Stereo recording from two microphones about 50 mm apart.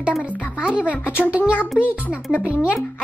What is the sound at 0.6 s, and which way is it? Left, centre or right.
Music, centre.